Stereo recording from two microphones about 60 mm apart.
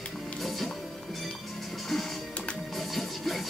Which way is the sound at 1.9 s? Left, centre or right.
Centre.